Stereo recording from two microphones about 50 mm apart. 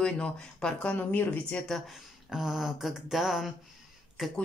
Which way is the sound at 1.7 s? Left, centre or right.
Centre.